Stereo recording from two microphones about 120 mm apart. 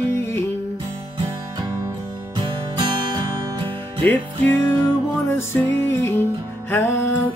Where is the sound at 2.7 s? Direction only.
40° right (ahead or behind).